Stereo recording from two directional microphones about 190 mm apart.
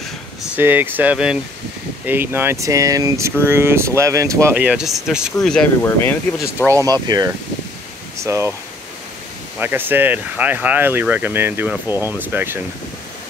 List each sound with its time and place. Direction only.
0.4 s speech: 10° right (ahead or behind); by 6.1 s 10° left (ahead or behind)
6.7 s speech: 20° right (ahead or behind)
9.6 s speech: 10° right (ahead or behind)